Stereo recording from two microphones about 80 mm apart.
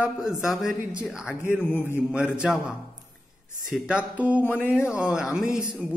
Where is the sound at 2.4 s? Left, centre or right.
Centre.